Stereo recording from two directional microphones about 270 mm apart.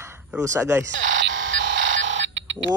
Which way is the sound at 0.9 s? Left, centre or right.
Right.